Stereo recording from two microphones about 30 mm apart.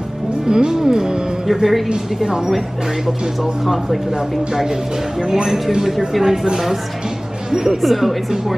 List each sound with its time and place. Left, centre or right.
0.5 s speech: right
1.5 s speech: centre
5.3 s speech: centre
7.8 s speech: centre